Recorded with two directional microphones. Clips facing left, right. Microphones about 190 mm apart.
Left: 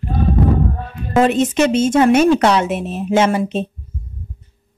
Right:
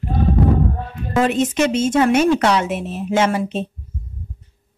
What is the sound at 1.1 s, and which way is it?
Speech, 25° left (ahead or behind).